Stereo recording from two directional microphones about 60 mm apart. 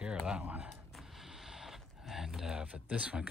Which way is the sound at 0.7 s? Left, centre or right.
Centre.